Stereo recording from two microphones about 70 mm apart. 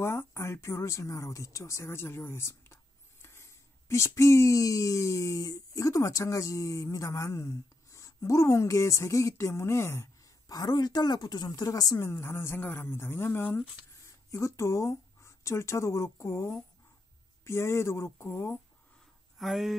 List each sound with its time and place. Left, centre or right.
0.0 s speech: left
10.5 s speech: left
12.0 s speech: left
14.0 s speech: left
19.3 s speech: centre